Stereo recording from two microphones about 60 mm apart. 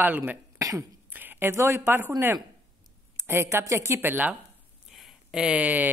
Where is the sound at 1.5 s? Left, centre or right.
Right.